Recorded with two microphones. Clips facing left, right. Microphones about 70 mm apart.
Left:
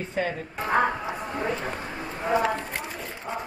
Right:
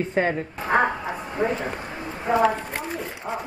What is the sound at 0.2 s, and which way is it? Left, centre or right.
Speech, right.